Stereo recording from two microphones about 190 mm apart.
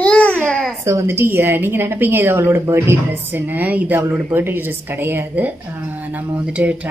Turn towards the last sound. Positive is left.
turn(degrees=-5)  # may be behind; listen again after turning